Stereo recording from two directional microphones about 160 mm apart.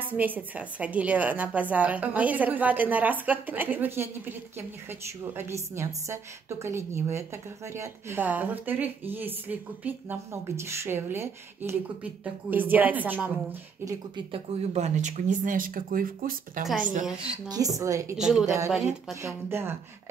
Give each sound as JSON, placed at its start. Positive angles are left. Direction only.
{"t": 0.0, "sound": "speech", "side_deg": -10}
{"t": 14.1, "sound": "speech", "side_deg": -40}
{"t": 17.5, "sound": "a woman's voice", "side_deg": -20}
{"t": 18.1, "sound": "speech", "side_deg": -5}
{"t": 19.2, "sound": "speech", "side_deg": -15}